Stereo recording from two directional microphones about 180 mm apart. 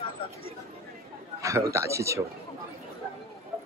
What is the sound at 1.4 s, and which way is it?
Speech, 15° right (ahead or behind).